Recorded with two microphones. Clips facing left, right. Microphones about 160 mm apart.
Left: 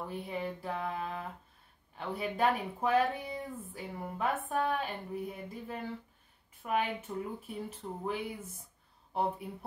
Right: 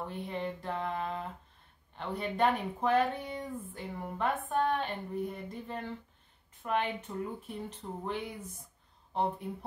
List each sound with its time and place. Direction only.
0.1 s speech: 5° left (ahead or behind)